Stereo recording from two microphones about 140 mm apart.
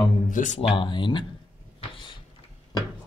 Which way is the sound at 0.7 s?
35° left (ahead or behind).